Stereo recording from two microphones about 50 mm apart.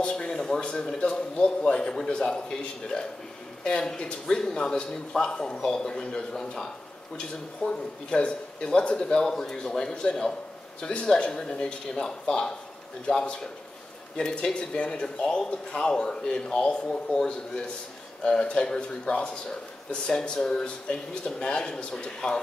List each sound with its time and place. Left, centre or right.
0.2 s speech: centre